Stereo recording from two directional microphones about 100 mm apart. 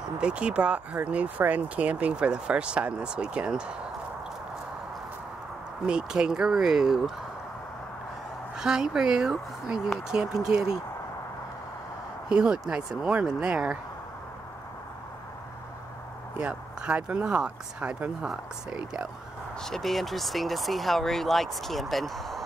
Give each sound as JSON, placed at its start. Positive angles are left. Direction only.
{"t": 0.2, "sound": "speech", "side_deg": -10}
{"t": 5.9, "sound": "speech", "side_deg": -10}
{"t": 8.5, "sound": "speech", "side_deg": -5}
{"t": 12.3, "sound": "speech", "side_deg": -10}
{"t": 16.3, "sound": "speech", "side_deg": -10}
{"t": 19.6, "sound": "speech", "side_deg": 5}